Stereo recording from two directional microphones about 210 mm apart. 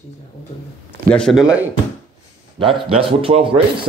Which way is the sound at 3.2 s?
25° right (ahead or behind).